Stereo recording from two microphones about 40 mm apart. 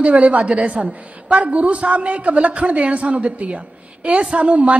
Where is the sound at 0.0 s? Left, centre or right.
Right.